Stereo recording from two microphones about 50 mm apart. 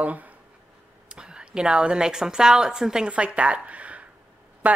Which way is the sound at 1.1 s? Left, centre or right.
Centre.